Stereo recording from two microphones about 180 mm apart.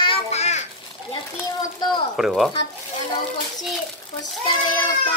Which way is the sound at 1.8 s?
25° left (ahead or behind).